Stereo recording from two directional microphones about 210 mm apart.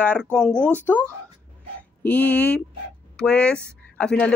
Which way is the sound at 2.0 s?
10° left (ahead or behind).